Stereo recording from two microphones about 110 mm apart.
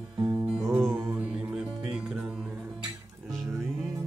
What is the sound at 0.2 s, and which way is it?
Music, 30° right (ahead or behind).